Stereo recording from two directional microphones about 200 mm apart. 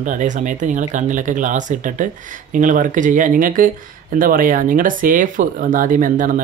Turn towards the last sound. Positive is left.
turn(degrees=-40)  # may be behind; listen again after turning